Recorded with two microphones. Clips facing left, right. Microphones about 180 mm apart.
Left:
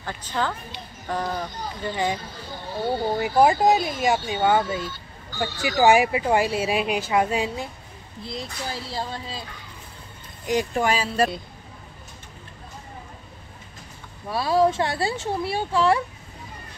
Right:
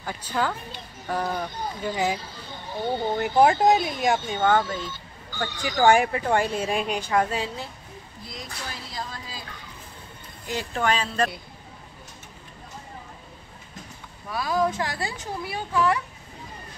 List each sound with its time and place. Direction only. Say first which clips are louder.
0.0 s speech: even; 10° right (ahead or behind)
2.8 s speech: left 1 dB; 5° left (ahead or behind)
8.2 s speech: left 6 dB; 30° left (ahead or behind)
10.4 s speech: left 4 dB; 15° left (ahead or behind)
14.3 s speech: left 5 dB; 30° left (ahead or behind)